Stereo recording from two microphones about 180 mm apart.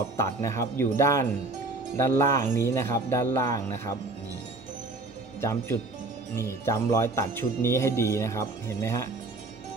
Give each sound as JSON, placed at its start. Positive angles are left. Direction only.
{"t": 0.2, "sound": "speech", "side_deg": 15}
{"t": 5.4, "sound": "speech", "side_deg": 15}